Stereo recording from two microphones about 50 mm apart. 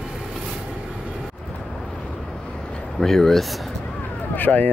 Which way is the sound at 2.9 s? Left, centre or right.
Centre.